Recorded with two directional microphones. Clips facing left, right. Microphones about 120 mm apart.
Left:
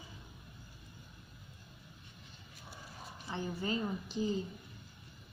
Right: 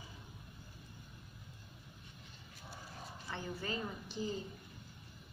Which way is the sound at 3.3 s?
20° left (ahead or behind).